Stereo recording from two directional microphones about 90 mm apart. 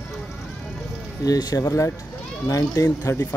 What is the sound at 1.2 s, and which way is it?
Speech, 45° left (ahead or behind).